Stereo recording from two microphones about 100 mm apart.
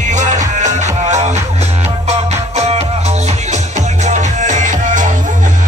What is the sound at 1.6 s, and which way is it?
Music, 90° right.